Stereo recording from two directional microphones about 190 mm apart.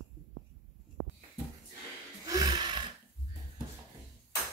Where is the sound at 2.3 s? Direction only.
20° right (ahead or behind).